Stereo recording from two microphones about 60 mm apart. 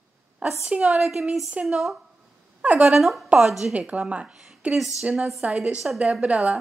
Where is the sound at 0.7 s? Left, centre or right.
Right.